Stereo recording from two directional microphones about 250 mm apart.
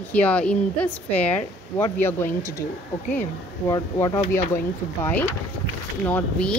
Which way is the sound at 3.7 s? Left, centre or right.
Centre.